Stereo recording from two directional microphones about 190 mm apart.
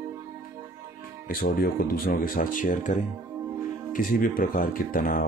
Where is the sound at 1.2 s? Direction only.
50° left (ahead or behind).